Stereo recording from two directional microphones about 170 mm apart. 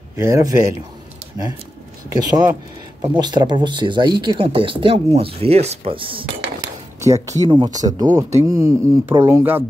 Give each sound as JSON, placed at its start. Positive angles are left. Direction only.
{"t": 0.1, "sound": "speech", "side_deg": -20}
{"t": 2.1, "sound": "speech", "side_deg": -25}
{"t": 7.2, "sound": "speech", "side_deg": -25}